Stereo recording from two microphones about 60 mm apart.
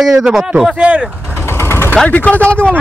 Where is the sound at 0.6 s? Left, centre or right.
Centre.